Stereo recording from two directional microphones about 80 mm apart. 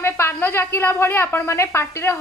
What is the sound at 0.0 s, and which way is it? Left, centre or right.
A woman's voice, left.